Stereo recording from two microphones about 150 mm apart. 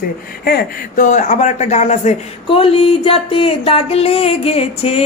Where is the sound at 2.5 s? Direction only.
40° left (ahead or behind).